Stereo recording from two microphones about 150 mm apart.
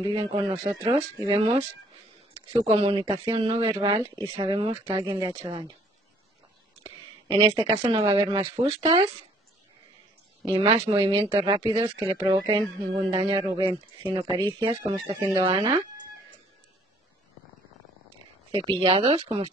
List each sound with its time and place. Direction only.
0.0 s speech: 35° right (ahead or behind)
5.3 s speech: 40° right (ahead or behind)
7.2 s speech: 35° right (ahead or behind)
10.4 s speech: 35° right (ahead or behind)
18.5 s speech: 35° right (ahead or behind)